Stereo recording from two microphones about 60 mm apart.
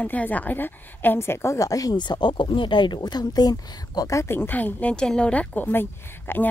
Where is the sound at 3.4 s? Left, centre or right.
Left.